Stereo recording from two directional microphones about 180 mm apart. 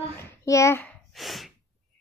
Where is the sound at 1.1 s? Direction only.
Centre (ahead or behind).